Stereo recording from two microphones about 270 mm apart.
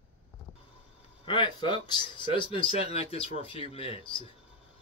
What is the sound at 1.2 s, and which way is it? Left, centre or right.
Speech, centre.